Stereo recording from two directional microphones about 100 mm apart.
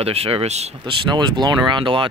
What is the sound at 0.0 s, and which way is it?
Speech, 80° right.